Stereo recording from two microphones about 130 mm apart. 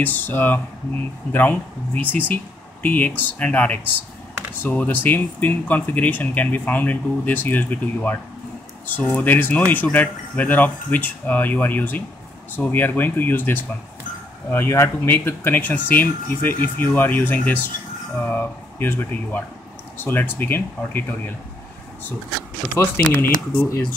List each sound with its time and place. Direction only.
0.0 s speech: 15° left (ahead or behind)
22.8 s speech: 15° left (ahead or behind)